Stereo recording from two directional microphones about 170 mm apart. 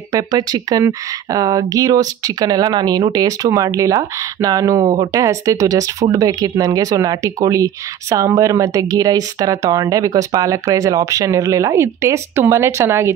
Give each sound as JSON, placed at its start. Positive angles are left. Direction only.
{"t": 0.1, "sound": "speech", "side_deg": -25}